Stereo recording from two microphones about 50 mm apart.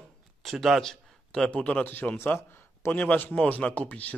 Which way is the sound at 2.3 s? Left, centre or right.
Left.